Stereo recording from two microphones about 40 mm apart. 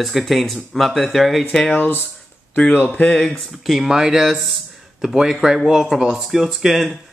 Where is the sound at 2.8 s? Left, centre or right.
Left.